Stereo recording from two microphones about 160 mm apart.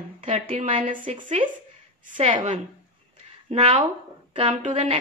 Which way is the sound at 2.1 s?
40° right (ahead or behind).